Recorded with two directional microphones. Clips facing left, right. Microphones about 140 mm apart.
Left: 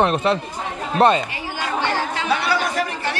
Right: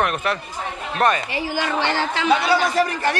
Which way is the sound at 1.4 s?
90° right.